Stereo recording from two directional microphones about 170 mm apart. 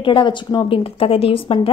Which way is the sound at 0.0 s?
30° left (ahead or behind).